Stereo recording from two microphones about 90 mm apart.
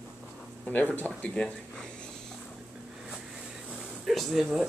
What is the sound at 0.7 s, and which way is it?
Speech, 20° left (ahead or behind).